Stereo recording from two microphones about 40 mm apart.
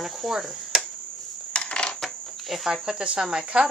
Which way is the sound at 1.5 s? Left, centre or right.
Left.